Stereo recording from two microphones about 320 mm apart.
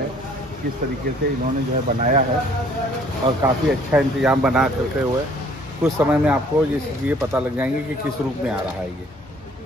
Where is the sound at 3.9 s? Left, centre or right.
Centre.